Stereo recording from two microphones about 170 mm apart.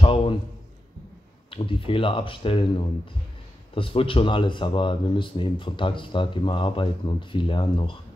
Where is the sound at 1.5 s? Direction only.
30° left (ahead or behind).